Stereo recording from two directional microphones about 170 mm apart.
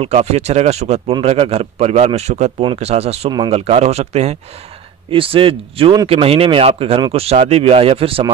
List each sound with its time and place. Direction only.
0.0 s speech: 40° right (ahead or behind)